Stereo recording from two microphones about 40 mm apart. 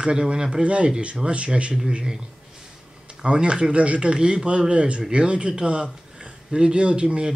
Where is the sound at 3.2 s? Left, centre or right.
Right.